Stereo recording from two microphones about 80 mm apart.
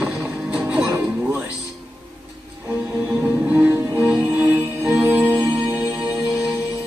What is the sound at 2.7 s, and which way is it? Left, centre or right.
Music, right.